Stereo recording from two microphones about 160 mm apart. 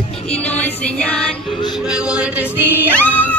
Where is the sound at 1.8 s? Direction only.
5° right (ahead or behind).